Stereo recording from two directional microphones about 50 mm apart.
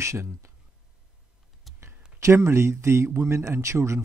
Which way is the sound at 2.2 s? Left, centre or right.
Right.